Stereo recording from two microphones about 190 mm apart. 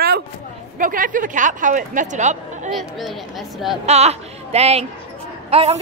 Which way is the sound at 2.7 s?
Centre (ahead or behind).